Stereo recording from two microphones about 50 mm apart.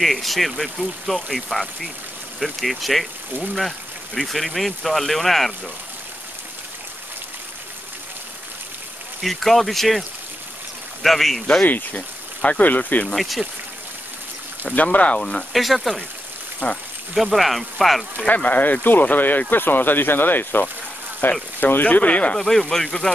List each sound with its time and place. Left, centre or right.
0.0 s speech: centre
9.2 s speech: centre
11.6 s speech: left
13.1 s speech: centre
14.8 s speech: left
15.5 s speech: centre
17.1 s speech: centre
18.2 s speech: left
22.4 s speech: centre
22.8 s speech: centre